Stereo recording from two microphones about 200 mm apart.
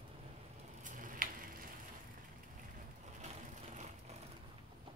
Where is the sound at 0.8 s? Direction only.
40° right (ahead or behind).